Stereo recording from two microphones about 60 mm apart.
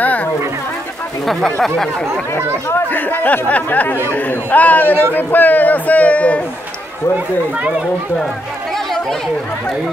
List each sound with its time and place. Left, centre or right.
0.0 s a sound: left
1.2 s speech: centre
2.3 s speech: left